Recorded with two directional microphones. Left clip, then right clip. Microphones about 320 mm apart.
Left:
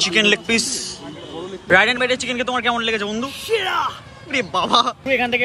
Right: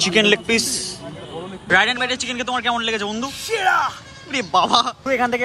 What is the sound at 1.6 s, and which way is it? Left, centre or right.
A man's voice, centre.